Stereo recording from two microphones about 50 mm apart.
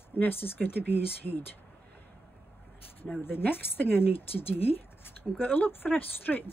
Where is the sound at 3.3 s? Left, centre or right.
Left.